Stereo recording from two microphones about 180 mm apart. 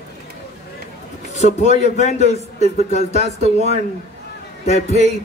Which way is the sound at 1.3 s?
40° left (ahead or behind).